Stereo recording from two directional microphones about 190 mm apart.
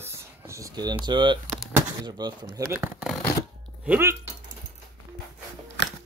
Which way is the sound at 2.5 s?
10° right (ahead or behind).